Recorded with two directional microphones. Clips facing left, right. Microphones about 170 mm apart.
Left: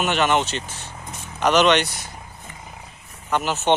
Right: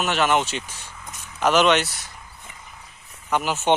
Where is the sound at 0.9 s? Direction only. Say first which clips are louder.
Left 4 dB; 45° left (ahead or behind).